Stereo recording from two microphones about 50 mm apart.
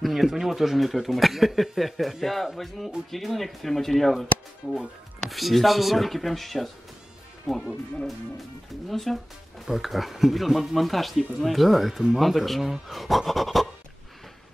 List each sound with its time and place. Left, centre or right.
0.0 s speech: centre
8.8 s speech: centre